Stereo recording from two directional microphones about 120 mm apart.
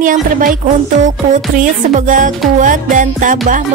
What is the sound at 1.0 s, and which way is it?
Music, 90° right.